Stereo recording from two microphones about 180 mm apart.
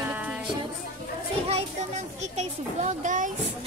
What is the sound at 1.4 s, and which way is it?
A child's voice, 35° right (ahead or behind).